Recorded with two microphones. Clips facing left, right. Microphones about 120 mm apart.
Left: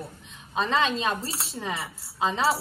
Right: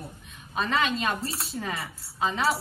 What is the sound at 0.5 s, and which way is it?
Speech, 30° left (ahead or behind).